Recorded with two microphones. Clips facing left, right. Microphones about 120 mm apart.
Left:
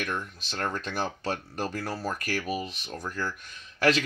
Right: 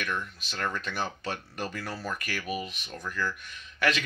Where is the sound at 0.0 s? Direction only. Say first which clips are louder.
Left 1 dB; 40° left (ahead or behind).